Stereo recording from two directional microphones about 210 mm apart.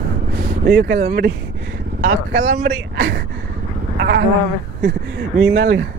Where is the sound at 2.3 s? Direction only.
50° right (ahead or behind).